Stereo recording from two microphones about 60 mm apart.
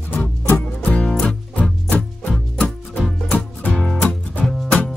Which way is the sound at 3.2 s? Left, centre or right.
Left.